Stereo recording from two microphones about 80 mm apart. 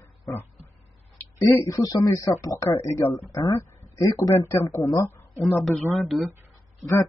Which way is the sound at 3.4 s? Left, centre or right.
Left.